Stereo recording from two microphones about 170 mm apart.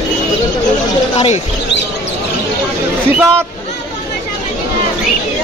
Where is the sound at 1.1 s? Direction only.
35° left (ahead or behind).